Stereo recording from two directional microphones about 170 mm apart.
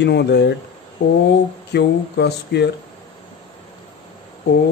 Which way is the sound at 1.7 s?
85° left.